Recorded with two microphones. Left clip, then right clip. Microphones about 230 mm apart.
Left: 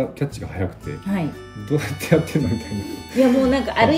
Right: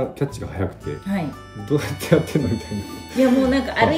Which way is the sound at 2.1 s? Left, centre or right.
Right.